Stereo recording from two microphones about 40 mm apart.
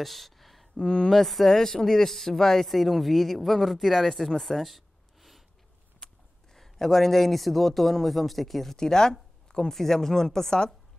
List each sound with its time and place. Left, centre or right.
0.0 s a sound: centre
0.7 s speech: centre
1.1 s speech: centre
4.4 s a sound: centre
6.5 s speech: centre
8.7 s speech: centre
9.7 s speech: centre